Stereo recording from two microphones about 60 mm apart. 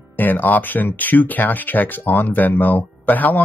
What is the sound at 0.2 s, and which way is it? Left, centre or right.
Speech, left.